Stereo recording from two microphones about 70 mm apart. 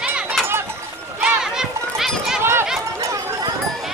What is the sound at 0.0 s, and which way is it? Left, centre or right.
Children playing, centre.